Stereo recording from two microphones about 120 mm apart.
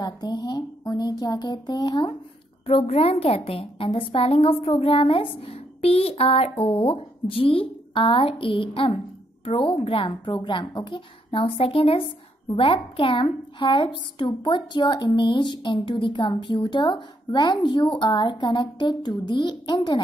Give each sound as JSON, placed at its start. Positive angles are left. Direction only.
{"t": 0.0, "sound": "speech", "side_deg": 35}
{"t": 2.6, "sound": "a woman's voice", "side_deg": 55}